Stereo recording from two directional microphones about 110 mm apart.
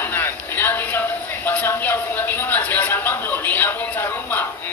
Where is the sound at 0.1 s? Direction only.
20° left (ahead or behind).